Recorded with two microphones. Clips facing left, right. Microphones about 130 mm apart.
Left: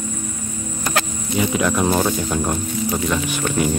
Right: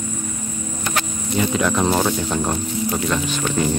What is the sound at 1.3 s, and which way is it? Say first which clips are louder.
Speech: even; 5° left (ahead or behind).